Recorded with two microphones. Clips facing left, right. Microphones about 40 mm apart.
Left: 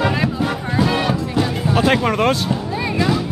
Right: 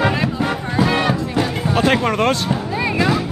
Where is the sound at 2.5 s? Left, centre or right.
Centre.